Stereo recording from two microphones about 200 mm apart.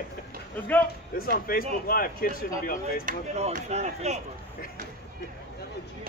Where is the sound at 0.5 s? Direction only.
10° left (ahead or behind).